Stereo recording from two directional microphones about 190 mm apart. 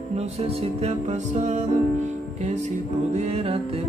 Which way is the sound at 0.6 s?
35° right (ahead or behind).